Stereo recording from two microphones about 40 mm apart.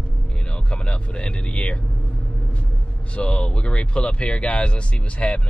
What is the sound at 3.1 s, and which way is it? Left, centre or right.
Speech, left.